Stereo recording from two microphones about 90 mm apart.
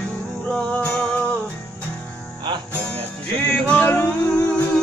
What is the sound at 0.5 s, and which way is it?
Music, 10° left (ahead or behind).